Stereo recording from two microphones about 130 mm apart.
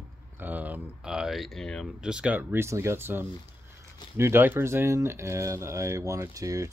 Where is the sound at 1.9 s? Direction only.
5° right (ahead or behind).